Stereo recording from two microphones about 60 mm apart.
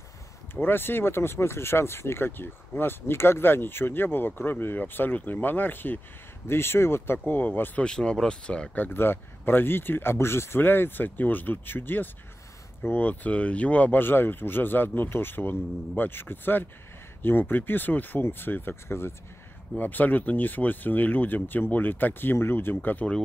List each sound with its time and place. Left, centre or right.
0.6 s speech: left
7.8 s speech: centre
8.7 s speech: left
19.8 s speech: left